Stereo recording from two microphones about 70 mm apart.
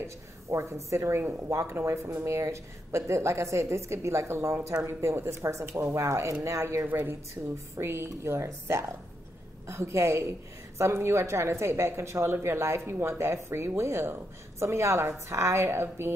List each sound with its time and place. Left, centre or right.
0.0 s a woman's voice: right